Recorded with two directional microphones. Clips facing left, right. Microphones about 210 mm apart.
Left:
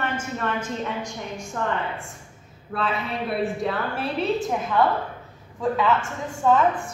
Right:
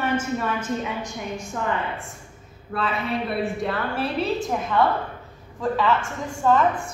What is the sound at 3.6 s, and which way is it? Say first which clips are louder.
A woman's voice: right 1 dB; centre (ahead or behind).